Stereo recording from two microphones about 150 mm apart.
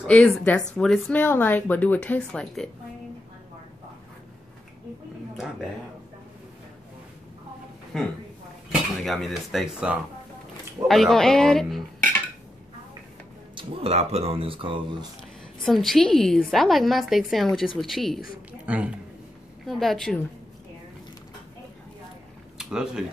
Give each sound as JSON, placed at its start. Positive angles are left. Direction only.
{"t": 0.0, "sound": "a woman's voice", "side_deg": 10}
{"t": 7.9, "sound": "a woman's voice", "side_deg": 5}
{"t": 13.6, "sound": "speech", "side_deg": -40}
{"t": 15.6, "sound": "a woman's voice", "side_deg": 0}
{"t": 22.6, "sound": "speech", "side_deg": -5}